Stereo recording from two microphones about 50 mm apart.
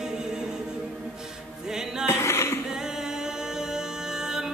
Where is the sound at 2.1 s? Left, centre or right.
Left.